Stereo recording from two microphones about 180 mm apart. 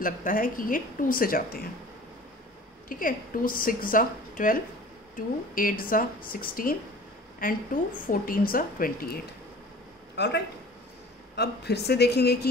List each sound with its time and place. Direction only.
0.0 s a woman's voice: 50° left (ahead or behind)
2.9 s a woman's voice: 50° left (ahead or behind)
10.1 s speech: 70° left (ahead or behind)